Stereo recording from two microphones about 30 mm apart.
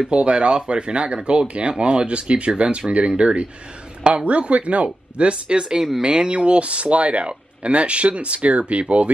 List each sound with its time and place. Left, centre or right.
0.1 s speech: right
6.3 s speech: right